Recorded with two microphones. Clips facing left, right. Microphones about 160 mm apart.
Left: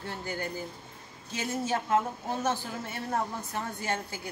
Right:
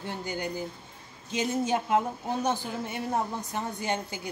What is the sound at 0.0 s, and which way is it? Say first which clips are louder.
A woman's voice: right 2 dB; 15° right (ahead or behind).